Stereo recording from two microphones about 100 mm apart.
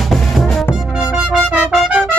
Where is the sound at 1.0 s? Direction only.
10° right (ahead or behind).